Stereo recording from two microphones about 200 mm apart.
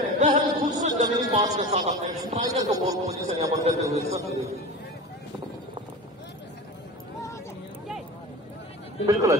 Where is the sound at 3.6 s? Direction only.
30° right (ahead or behind).